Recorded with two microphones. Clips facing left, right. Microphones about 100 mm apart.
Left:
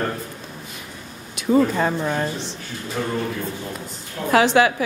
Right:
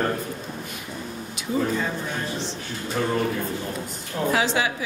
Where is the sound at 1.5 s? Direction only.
60° left (ahead or behind).